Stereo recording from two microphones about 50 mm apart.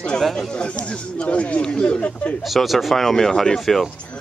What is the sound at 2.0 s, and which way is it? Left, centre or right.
Speech, left.